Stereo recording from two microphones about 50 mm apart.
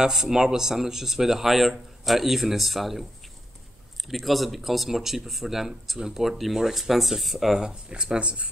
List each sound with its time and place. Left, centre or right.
0.0 s a man's voice: centre
7.9 s speech: centre